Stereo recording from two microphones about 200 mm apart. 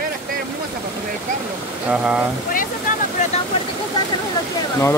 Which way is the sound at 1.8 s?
5° right (ahead or behind).